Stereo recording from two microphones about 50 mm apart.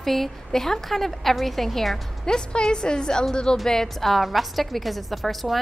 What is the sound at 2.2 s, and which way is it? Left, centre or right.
A woman's voice, centre.